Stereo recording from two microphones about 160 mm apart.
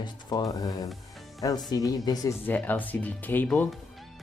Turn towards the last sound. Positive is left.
turn(degrees=0)  # may be behind; listen again after turning